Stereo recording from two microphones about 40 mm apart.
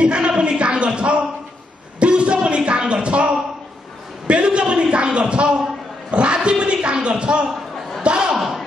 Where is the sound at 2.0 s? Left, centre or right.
Right.